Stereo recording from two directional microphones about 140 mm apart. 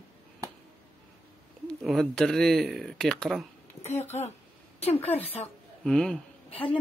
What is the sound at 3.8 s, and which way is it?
Speech, 50° left (ahead or behind).